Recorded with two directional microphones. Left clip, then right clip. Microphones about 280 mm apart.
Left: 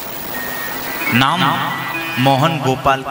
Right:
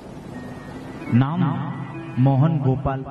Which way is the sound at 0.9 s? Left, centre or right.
Centre.